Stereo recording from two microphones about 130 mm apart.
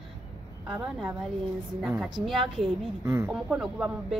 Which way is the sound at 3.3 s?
5° right (ahead or behind).